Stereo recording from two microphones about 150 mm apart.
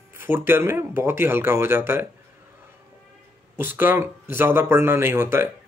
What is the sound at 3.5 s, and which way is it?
Speech, 15° right (ahead or behind).